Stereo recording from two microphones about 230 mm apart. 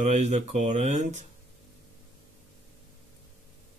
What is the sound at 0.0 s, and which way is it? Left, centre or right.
Speech, right.